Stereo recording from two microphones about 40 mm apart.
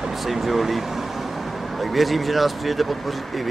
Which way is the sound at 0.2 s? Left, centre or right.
Centre.